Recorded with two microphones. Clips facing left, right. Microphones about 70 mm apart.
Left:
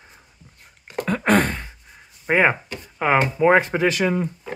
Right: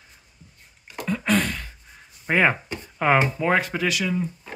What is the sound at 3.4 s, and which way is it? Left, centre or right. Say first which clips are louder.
Speech: left 6 dB; left.